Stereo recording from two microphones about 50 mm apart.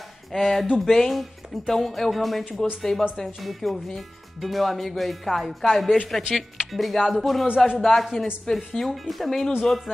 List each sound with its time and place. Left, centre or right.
0.3 s speech: centre
7.4 s speech: centre
7.8 s speech: centre